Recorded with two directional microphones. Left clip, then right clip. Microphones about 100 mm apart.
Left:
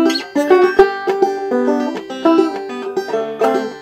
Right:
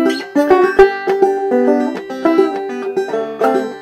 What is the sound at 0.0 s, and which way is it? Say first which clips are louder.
Music: right 1 dB; 25° right (ahead or behind).